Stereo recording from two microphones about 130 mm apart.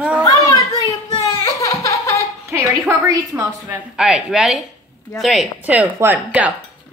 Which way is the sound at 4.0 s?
5° right (ahead or behind).